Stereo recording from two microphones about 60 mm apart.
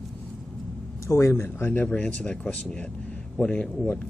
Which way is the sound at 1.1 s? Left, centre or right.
Left.